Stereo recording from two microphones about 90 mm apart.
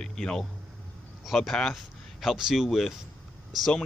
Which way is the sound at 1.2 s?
Centre (ahead or behind).